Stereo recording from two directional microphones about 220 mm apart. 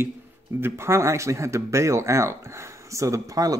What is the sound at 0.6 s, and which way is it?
A man's voice, 10° right (ahead or behind).